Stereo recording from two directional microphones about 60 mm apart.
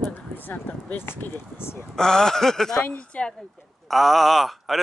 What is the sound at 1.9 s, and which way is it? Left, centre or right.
Speech, centre.